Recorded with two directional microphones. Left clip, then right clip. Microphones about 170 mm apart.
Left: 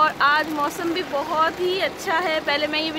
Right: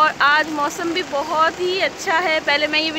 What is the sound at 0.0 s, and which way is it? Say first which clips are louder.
Speech: right 3 dB; 15° right (ahead or behind).